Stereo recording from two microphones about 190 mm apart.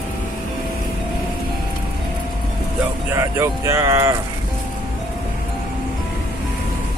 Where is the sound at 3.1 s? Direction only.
15° right (ahead or behind).